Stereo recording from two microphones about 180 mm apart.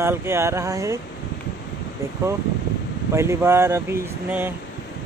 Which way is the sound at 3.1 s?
15° right (ahead or behind).